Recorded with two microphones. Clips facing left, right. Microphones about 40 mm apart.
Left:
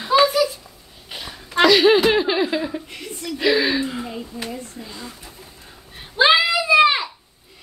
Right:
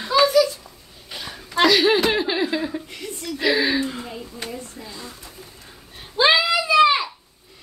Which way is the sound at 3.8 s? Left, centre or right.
Centre.